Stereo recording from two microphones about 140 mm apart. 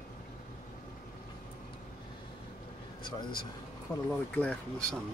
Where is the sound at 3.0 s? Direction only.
35° left (ahead or behind).